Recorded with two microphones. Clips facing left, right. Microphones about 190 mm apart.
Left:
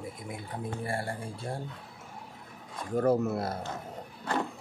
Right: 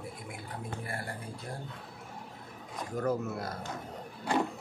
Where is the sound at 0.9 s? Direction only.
30° left (ahead or behind).